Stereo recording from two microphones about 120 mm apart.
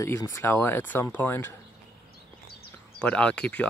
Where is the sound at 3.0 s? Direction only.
10° left (ahead or behind).